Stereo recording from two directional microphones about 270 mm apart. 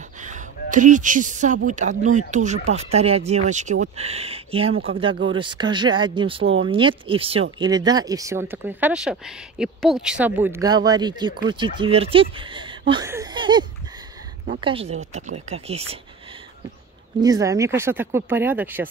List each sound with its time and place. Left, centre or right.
0.2 s a sound: right
1.7 s speech: right
17.2 s speech: centre